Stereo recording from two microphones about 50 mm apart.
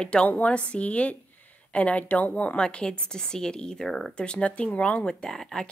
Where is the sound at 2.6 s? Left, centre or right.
Centre.